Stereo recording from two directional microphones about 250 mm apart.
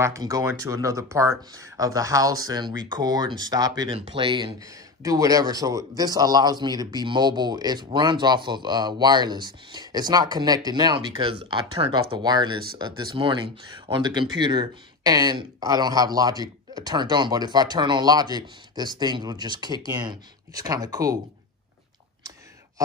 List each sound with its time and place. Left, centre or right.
0.0 s speech: centre